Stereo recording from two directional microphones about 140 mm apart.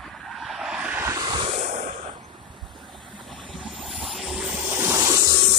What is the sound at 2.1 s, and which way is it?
Vehicle, 30° right (ahead or behind).